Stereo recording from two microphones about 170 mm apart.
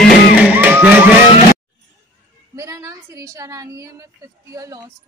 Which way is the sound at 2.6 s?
20° right (ahead or behind).